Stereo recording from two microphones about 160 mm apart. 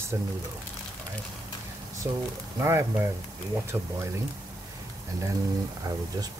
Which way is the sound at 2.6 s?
15° right (ahead or behind).